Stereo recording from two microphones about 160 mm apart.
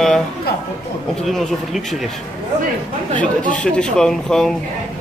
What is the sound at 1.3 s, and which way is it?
Speech, centre (ahead or behind).